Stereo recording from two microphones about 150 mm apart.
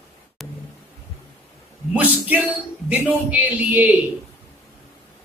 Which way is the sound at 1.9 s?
10° right (ahead or behind).